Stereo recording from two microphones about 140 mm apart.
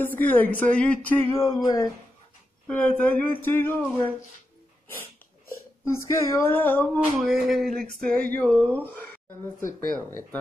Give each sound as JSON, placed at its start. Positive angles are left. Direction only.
{"t": 0.0, "sound": "speech", "side_deg": 15}
{"t": 1.5, "sound": "speech", "side_deg": 25}
{"t": 2.7, "sound": "speech", "side_deg": 10}
{"t": 5.9, "sound": "speech", "side_deg": 15}
{"t": 7.2, "sound": "a sound", "side_deg": 0}
{"t": 8.6, "sound": "speech", "side_deg": 10}
{"t": 9.6, "sound": "speech", "side_deg": 20}